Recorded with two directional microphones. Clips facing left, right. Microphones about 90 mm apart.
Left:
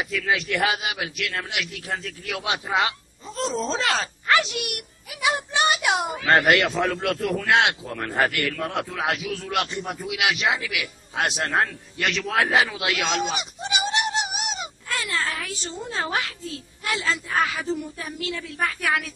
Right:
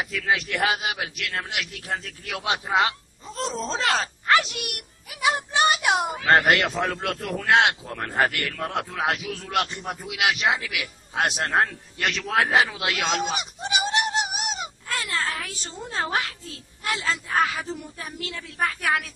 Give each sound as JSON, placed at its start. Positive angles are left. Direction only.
{"t": 0.0, "sound": "a man's voice", "side_deg": -40}